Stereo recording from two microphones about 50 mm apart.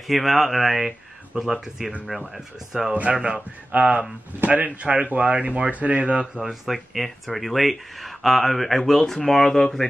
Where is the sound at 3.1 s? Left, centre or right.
Centre.